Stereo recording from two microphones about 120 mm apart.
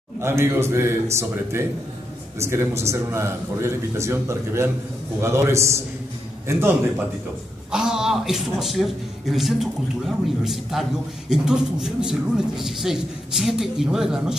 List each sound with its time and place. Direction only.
0.2 s a man's voice: 20° right (ahead or behind)
7.7 s a man's voice: 5° right (ahead or behind)